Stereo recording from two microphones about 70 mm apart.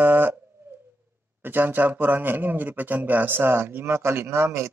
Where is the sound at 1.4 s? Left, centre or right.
Right.